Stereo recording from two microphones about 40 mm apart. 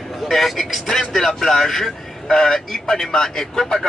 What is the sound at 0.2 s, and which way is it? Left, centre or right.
Speech, centre.